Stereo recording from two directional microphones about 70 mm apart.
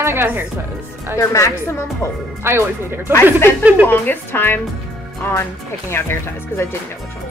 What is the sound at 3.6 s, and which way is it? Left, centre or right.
Speech, right.